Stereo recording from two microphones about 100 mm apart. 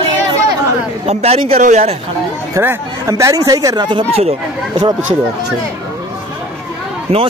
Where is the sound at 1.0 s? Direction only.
90° right.